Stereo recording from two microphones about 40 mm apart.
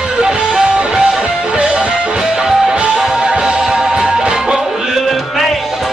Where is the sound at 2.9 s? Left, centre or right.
Centre.